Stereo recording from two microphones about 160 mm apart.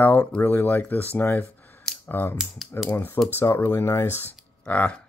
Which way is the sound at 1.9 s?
10° left (ahead or behind).